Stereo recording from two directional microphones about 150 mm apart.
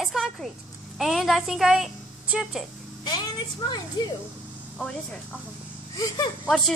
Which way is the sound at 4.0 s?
30° left (ahead or behind).